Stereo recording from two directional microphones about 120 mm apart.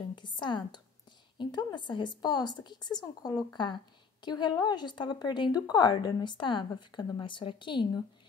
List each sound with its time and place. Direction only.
0.1 s a woman's voice: 40° left (ahead or behind)